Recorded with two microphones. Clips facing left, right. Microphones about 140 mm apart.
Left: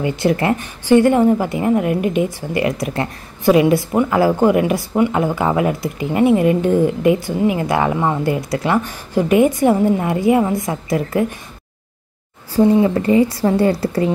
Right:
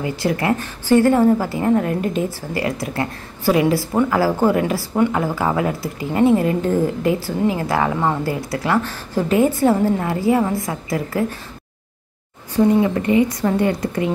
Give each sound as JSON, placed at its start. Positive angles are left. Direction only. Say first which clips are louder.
{"t": 0.0, "sound": "a woman's voice", "louder": "left 4 dB", "side_deg": 25}
{"t": 12.5, "sound": "speech", "louder": "left 2 dB", "side_deg": 35}